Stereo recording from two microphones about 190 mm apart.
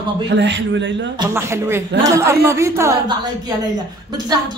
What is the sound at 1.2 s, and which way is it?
Speech, 15° right (ahead or behind).